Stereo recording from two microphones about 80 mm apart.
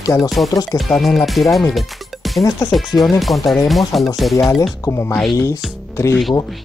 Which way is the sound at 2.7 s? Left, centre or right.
Centre.